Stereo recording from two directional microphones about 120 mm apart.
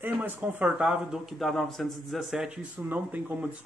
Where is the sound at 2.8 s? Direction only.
15° right (ahead or behind).